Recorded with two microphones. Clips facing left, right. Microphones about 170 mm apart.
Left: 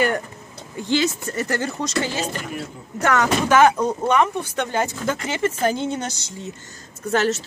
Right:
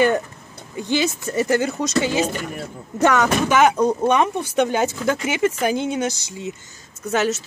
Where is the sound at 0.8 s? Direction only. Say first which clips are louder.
Even; 15° right (ahead or behind).